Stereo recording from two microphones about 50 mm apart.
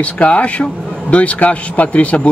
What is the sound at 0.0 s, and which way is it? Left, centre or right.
Speech, left.